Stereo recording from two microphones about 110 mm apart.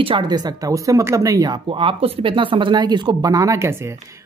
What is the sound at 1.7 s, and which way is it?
Speech, 55° right (ahead or behind).